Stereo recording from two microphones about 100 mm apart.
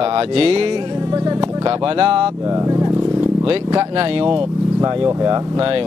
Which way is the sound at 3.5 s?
60° right (ahead or behind).